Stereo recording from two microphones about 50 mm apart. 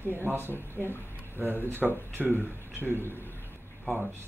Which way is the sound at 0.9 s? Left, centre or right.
Left.